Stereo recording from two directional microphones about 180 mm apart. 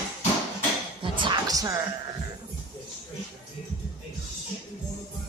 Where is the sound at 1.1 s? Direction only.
25° right (ahead or behind).